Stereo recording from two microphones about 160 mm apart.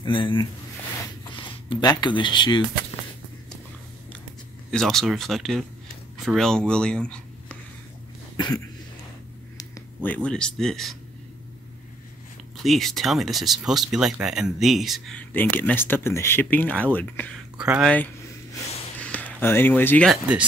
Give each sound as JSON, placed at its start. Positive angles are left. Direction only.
{"t": 0.0, "sound": "speech", "side_deg": 30}
{"t": 4.6, "sound": "speech", "side_deg": 0}
{"t": 8.4, "sound": "speech", "side_deg": 25}
{"t": 10.0, "sound": "speech", "side_deg": 10}
{"t": 12.6, "sound": "speech", "side_deg": 0}
{"t": 17.6, "sound": "speech", "side_deg": -5}
{"t": 18.9, "sound": "a sound", "side_deg": 10}
{"t": 20.1, "sound": "speech", "side_deg": -10}